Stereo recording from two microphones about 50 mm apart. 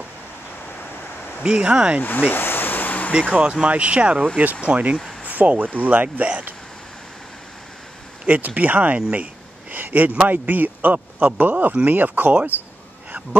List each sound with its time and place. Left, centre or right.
1.4 s speech: centre
2.0 s a sound: left
3.2 s speech: right
8.3 s speech: right